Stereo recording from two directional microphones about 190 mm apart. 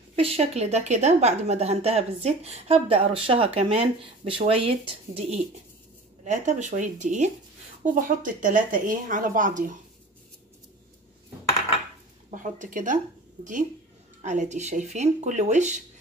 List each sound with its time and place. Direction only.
0.1 s a woman's voice: 30° right (ahead or behind)
12.3 s a woman's voice: 40° right (ahead or behind)